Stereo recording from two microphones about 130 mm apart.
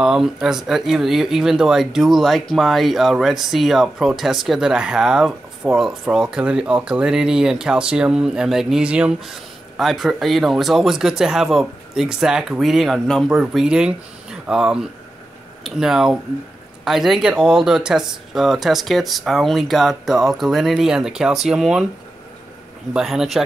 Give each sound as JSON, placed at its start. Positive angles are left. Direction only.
{"t": 0.0, "sound": "speech", "side_deg": -5}
{"t": 22.9, "sound": "speech", "side_deg": -5}